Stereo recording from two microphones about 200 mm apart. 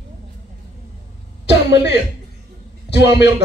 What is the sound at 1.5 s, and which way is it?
Throat clearing, 60° left (ahead or behind).